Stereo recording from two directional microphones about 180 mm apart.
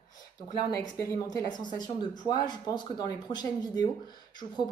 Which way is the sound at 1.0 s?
15° left (ahead or behind).